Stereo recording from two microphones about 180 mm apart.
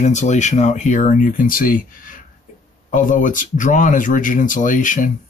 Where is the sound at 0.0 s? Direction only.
40° left (ahead or behind).